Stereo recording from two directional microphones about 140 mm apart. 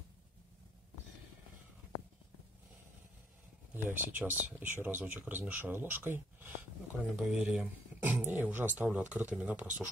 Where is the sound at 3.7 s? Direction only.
15° right (ahead or behind).